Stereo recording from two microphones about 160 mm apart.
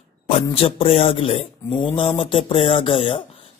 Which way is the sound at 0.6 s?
35° left (ahead or behind).